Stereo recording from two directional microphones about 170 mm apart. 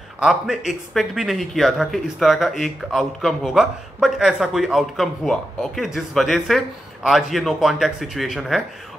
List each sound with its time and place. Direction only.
0.2 s speech: 5° right (ahead or behind)